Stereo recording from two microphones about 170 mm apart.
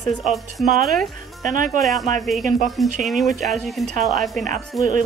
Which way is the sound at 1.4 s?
50° right (ahead or behind).